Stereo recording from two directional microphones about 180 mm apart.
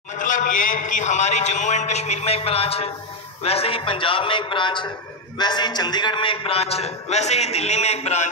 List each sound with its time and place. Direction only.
0.2 s a man's voice: 45° left (ahead or behind)